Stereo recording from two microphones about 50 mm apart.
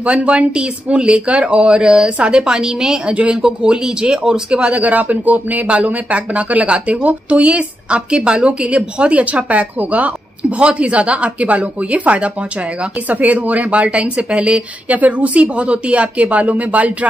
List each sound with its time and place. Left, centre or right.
0.0 s a man's voice: right